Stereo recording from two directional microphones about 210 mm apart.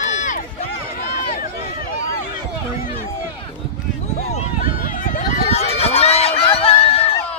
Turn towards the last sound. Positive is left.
turn(degrees=30)  # may be behind; listen again after turning